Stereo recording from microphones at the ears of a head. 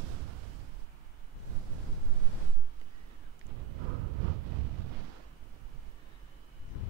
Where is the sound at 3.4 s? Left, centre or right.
Right.